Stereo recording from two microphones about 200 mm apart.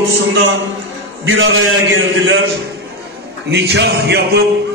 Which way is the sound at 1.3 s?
70° right (ahead or behind).